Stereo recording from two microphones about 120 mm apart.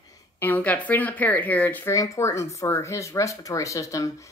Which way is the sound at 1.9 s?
25° left (ahead or behind).